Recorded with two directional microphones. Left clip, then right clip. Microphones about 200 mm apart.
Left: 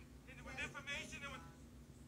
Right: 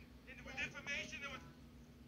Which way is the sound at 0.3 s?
10° left (ahead or behind).